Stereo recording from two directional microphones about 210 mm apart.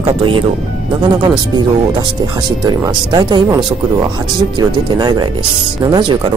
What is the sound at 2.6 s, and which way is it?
Speech, 20° right (ahead or behind).